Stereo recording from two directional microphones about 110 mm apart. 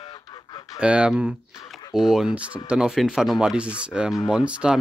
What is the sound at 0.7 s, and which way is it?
Speech, 10° right (ahead or behind).